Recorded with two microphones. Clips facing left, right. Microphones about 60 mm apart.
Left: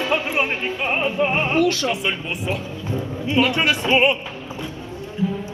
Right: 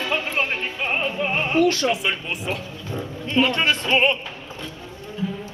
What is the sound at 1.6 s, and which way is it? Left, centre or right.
Speech, right.